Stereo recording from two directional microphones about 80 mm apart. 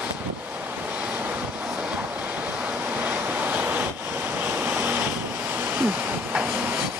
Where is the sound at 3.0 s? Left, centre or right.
Right.